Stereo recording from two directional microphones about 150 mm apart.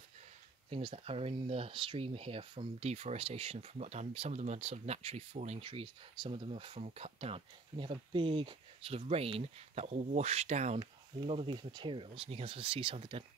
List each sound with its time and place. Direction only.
0.7 s speech: 40° right (ahead or behind)
11.1 s speech: 35° right (ahead or behind)